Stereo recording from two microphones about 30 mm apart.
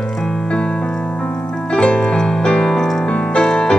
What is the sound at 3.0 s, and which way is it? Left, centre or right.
Piano, left.